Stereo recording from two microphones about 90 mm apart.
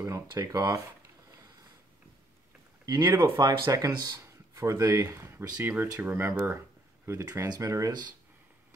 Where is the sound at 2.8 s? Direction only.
50° right (ahead or behind).